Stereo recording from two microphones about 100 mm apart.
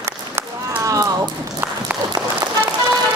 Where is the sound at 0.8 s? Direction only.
35° right (ahead or behind).